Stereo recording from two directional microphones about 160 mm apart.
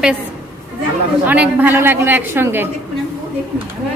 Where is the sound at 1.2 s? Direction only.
10° right (ahead or behind).